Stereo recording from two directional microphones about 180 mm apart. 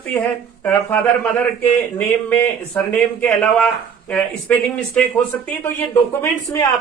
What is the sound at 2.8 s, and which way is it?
Speech, 10° left (ahead or behind).